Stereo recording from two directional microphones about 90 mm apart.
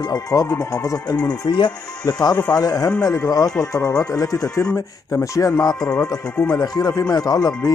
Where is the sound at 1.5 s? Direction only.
55° left (ahead or behind).